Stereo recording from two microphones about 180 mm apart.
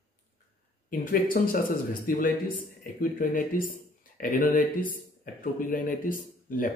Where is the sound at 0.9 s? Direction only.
50° left (ahead or behind).